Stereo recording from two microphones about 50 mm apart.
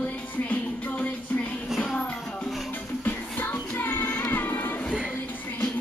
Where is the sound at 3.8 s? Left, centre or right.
Left.